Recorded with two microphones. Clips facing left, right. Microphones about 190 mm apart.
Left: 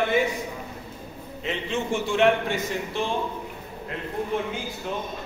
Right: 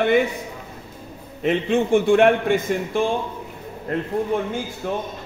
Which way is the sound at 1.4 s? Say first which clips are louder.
Right 9 dB; 55° right (ahead or behind).